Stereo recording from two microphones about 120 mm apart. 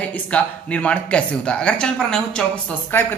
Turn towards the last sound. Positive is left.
turn(degrees=15)  # may be behind; listen again after turning